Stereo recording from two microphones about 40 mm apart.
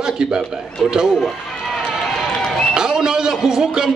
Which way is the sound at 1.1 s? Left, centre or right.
Centre.